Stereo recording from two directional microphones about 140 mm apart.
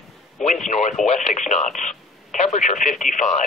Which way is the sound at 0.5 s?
55° left (ahead or behind).